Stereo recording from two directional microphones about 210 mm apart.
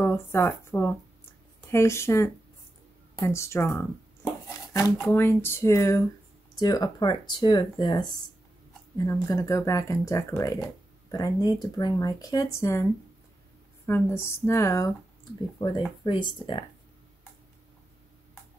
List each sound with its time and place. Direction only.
0.0 s speech: 10° left (ahead or behind)
13.8 s speech: 10° left (ahead or behind)
16.0 s speech: 20° left (ahead or behind)